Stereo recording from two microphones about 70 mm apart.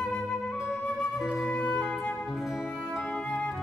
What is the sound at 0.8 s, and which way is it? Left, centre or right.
Flute, centre.